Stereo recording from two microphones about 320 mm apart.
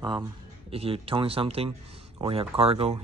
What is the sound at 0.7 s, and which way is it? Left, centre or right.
Speech, centre.